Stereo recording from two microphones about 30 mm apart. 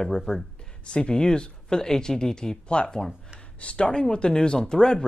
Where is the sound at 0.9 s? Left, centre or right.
Left.